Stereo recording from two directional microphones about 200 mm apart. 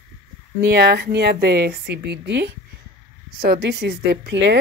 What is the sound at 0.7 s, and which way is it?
A woman's voice, 55° right (ahead or behind).